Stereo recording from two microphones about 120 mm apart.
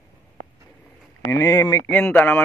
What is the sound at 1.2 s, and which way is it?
Speech, 25° left (ahead or behind).